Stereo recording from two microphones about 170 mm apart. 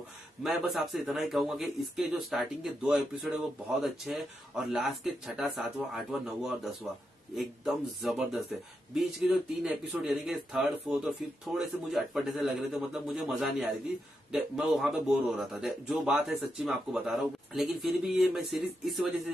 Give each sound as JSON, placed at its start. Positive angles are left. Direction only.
{"t": 0.4, "sound": "speech", "side_deg": 0}